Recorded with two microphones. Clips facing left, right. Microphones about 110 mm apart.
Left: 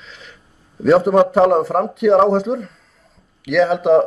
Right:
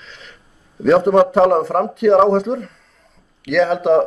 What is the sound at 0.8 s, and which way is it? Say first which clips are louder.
Speech: even; centre (ahead or behind).